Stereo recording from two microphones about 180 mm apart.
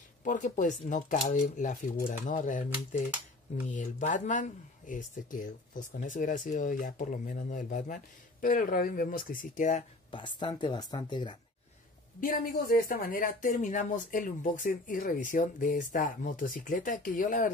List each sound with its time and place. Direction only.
0.2 s speech: 45° left (ahead or behind)
10.1 s speech: 25° left (ahead or behind)
12.2 s speech: 55° left (ahead or behind)